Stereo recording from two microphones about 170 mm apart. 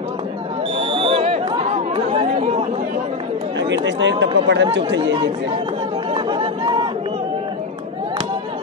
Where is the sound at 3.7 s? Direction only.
90° right.